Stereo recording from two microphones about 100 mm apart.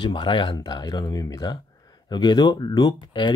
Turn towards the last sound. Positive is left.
turn(degrees=45)  # may be behind; listen again after turning